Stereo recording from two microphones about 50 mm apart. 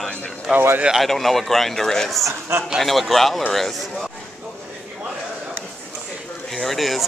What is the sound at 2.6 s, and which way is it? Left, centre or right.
Speech, centre.